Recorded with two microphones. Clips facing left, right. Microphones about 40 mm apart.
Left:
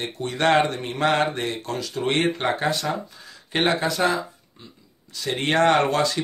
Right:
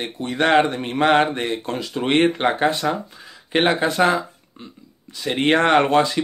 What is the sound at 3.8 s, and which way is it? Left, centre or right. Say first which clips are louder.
Speech: right 4 dB; right.